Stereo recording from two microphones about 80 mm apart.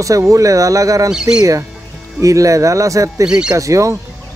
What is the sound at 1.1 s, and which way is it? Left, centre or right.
Speech, centre.